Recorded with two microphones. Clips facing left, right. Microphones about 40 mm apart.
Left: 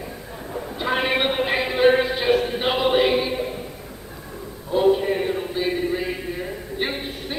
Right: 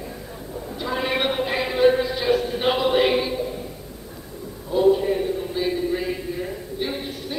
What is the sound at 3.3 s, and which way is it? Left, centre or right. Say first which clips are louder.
Music: left 1 dB; left.